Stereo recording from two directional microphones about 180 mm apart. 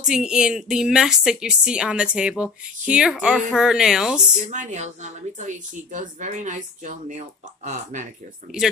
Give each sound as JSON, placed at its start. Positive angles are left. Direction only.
{"t": 0.0, "sound": "a woman's voice", "side_deg": -5}
{"t": 4.5, "sound": "speech", "side_deg": -40}